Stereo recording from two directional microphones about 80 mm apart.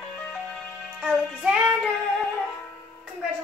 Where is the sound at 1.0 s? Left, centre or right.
Centre.